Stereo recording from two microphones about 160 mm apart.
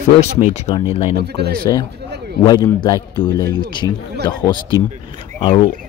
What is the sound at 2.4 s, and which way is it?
Speech, 25° left (ahead or behind).